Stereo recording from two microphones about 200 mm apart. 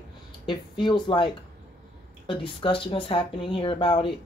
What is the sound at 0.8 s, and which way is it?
Speech, 20° left (ahead or behind).